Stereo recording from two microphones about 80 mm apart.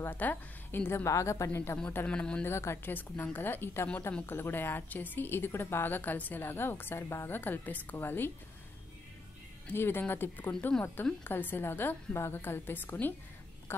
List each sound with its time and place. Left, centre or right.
0.0 s a woman's voice: left
2.0 s speech: centre
2.4 s a woman's voice: left
9.7 s a woman's voice: left